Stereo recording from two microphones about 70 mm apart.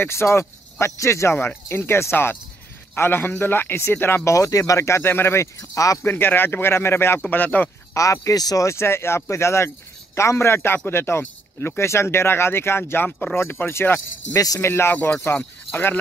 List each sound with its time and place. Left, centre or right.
0.0 s speech: left
4.3 s speech: left
6.0 s speech: left
7.2 s speech: left
7.9 s speech: left
8.4 s speech: left
8.6 s speech: left
14.3 s speech: left
14.6 s speech: left